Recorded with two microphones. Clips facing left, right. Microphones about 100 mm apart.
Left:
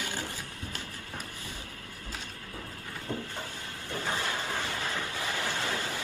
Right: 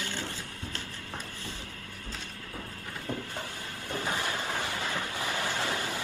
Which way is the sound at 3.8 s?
20° right (ahead or behind).